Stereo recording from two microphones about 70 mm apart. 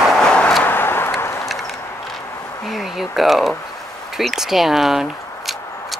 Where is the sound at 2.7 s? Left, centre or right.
Centre.